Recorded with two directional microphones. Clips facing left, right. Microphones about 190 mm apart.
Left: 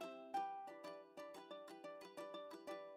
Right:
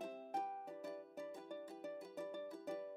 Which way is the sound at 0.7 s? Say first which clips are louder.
Right 5 dB; 45° right (ahead or behind).